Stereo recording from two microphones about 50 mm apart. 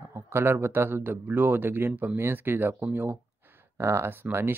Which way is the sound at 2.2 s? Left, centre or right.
Right.